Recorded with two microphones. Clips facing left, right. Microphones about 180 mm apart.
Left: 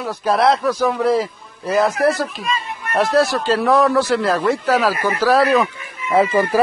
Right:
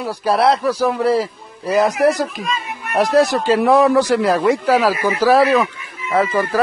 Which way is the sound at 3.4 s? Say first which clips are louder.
Right 2 dB; 15° right (ahead or behind).